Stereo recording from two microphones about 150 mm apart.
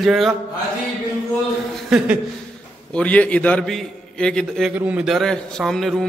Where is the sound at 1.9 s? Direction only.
5° right (ahead or behind).